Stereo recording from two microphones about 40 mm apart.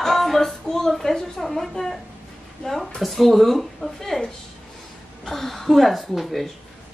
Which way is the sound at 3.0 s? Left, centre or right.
Centre.